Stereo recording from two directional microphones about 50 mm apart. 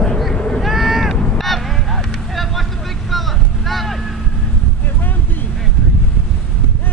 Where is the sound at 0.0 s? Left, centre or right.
Centre.